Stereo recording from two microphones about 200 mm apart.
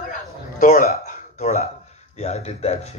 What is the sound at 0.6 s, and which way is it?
Speech, 40° left (ahead or behind).